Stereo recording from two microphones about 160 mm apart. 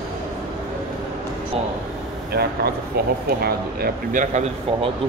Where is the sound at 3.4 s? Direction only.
65° right (ahead or behind).